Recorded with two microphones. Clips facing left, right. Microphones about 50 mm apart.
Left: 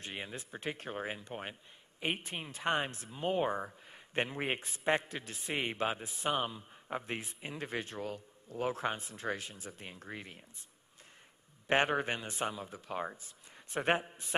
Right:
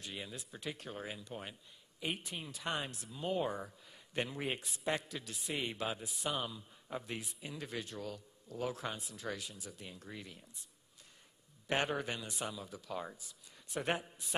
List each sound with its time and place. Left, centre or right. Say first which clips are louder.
0.0 s speech: left 3 dB; left
11.6 s speech: left 5 dB; left